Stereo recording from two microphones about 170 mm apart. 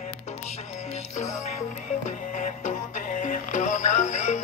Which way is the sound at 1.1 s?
40° left (ahead or behind).